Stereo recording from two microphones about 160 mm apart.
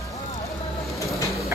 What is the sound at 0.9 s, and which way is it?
Vehicle, 20° left (ahead or behind).